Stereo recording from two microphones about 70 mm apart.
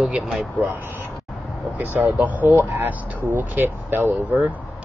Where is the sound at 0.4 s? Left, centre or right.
Right.